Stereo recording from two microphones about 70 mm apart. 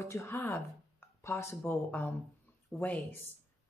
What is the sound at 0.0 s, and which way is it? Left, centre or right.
Speech, left.